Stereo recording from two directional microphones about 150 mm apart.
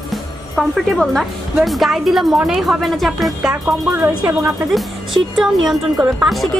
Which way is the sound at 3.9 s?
15° right (ahead or behind).